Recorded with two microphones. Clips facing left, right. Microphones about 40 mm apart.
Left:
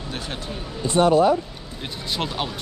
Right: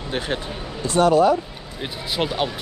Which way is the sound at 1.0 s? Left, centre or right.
Right.